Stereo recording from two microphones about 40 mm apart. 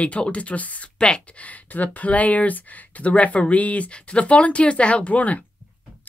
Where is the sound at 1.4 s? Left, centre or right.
Left.